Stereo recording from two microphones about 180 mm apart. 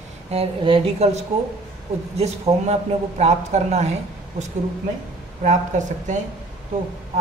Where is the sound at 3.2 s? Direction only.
35° right (ahead or behind).